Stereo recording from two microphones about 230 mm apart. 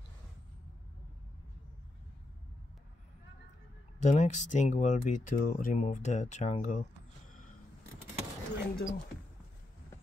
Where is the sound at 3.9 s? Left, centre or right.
Left.